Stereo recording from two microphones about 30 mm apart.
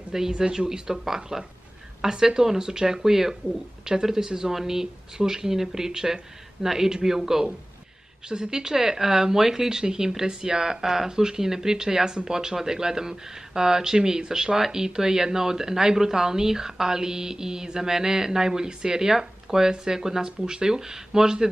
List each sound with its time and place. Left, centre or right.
0.3 s speech: right